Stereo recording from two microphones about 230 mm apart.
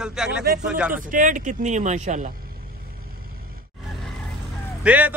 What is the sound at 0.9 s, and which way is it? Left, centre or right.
Speech, right.